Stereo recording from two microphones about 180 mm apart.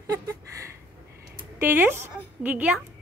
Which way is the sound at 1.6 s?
10° right (ahead or behind).